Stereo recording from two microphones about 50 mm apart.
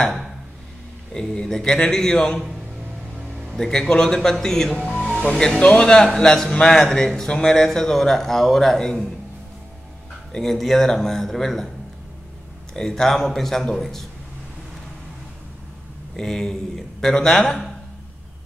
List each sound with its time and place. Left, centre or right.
0.0 s a man's voice: centre
1.1 s speech: centre
3.5 s speech: centre
5.6 s a man's voice: left
10.3 s a man's voice: centre
12.7 s a man's voice: centre
16.2 s speech: centre